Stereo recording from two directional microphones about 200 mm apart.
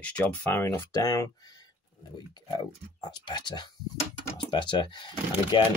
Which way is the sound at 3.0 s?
20° left (ahead or behind).